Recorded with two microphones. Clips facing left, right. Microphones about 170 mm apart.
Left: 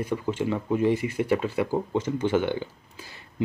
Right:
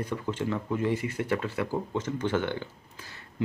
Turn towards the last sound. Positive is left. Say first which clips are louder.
# left 4 dB
turn(degrees=15)  # may be behind; listen again after turning